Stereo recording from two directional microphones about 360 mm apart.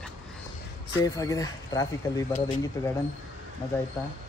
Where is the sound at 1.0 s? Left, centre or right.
Centre.